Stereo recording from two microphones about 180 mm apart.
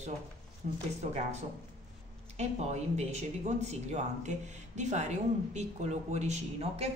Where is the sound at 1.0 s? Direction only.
40° right (ahead or behind).